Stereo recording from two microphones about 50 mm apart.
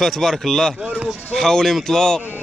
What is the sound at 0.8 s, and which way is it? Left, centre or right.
Speech, right.